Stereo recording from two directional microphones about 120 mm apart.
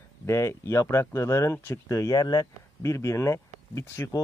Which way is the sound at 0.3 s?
20° left (ahead or behind).